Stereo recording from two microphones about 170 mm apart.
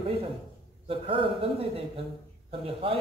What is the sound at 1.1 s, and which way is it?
Speech, 35° right (ahead or behind).